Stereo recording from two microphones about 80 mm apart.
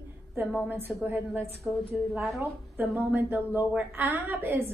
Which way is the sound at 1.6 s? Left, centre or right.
Centre.